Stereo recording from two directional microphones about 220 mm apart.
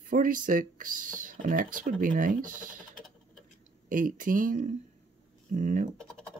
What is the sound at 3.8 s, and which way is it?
Speech, 40° right (ahead or behind).